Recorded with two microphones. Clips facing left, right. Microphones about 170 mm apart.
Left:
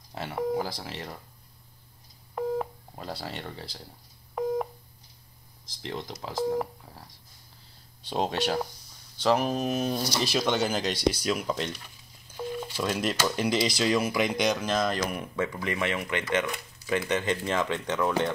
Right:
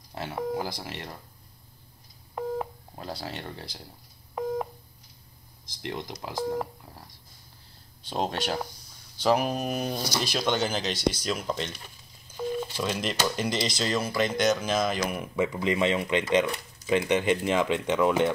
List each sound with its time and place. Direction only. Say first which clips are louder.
0.1 s speech: left 2 dB; centre (ahead or behind)
2.3 s telephone dialing: left 2 dB; centre (ahead or behind)
5.8 s speech: right 1 dB; 15° right (ahead or behind)
6.3 s speech: left 2 dB; centre (ahead or behind)
8.1 s speech: left 2 dB; 5° left (ahead or behind)
12.4 s telephone dialing: right 3 dB; 10° left (ahead or behind)
12.7 s speech: left 1 dB; 5° left (ahead or behind)
14.6 s speech: even; 5° right (ahead or behind)
15.3 s speech: right 7 dB; 20° right (ahead or behind)